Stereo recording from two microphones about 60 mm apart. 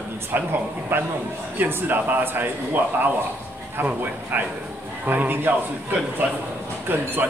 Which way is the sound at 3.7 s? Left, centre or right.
Right.